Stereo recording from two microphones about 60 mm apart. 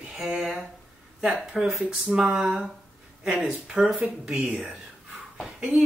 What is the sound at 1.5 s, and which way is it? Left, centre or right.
Speech, centre.